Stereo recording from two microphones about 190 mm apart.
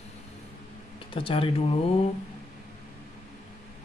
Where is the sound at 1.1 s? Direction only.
30° left (ahead or behind).